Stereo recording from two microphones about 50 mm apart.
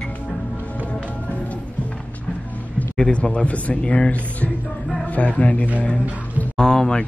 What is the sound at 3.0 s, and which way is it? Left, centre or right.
Speech, left.